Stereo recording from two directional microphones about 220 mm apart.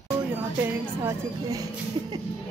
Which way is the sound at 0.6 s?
10° right (ahead or behind).